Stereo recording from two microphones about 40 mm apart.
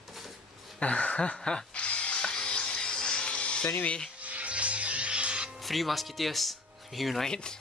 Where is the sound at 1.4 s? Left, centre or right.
Left.